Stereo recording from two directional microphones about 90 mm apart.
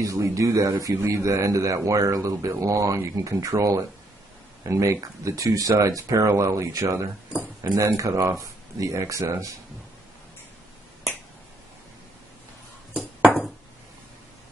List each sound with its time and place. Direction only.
0.0 s a man's voice: 35° right (ahead or behind)